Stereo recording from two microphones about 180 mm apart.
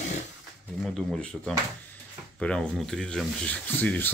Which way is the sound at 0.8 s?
Centre (ahead or behind).